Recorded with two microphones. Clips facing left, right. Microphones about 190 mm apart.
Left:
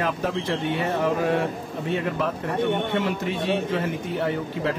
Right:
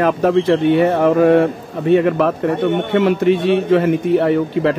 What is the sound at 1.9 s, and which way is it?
A man's voice, 70° right (ahead or behind).